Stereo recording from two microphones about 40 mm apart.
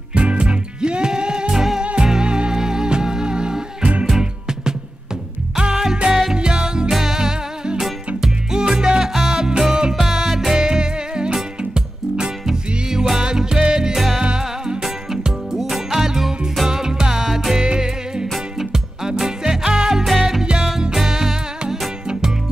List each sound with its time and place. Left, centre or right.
0.1 s music: right
1.5 s music: centre
1.8 s music: right; by 10.5 s centre
10.5 s music: centre
13.9 s music: centre
17.6 s music: centre
20.1 s music: centre